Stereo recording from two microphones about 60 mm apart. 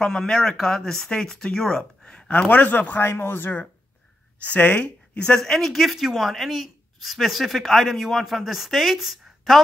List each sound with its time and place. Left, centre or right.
0.0 s speech: centre
2.2 s a man's voice: left
4.5 s speech: left
5.4 s speech: centre